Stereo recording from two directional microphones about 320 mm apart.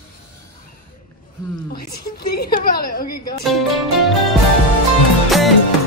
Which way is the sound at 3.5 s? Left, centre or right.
Centre.